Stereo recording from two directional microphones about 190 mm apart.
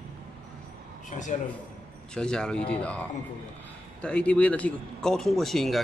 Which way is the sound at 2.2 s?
5° left (ahead or behind).